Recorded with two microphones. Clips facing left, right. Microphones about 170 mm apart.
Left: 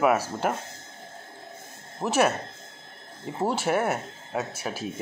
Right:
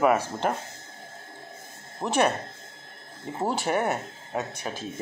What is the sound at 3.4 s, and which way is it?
Speech, centre (ahead or behind).